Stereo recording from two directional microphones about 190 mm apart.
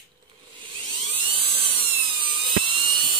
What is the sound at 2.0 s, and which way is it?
Dental drill, 25° right (ahead or behind).